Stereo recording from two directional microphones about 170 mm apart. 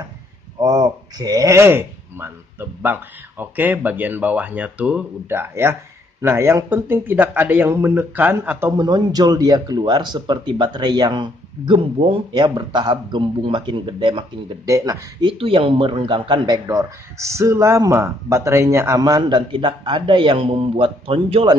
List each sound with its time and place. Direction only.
0.6 s a man's voice: 25° right (ahead or behind)